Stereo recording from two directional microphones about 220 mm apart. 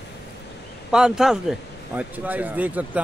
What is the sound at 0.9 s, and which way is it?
A man's voice, centre (ahead or behind).